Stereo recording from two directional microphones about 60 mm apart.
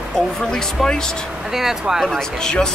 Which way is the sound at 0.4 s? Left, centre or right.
Centre.